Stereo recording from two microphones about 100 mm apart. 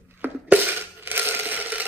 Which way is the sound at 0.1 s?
20° right (ahead or behind).